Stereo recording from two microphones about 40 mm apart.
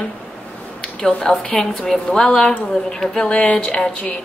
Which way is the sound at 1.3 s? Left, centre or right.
Left.